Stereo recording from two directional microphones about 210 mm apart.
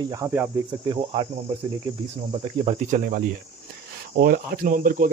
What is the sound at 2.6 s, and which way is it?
Speech, 30° right (ahead or behind).